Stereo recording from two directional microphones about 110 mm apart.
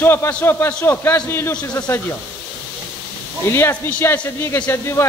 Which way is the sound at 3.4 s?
25° left (ahead or behind).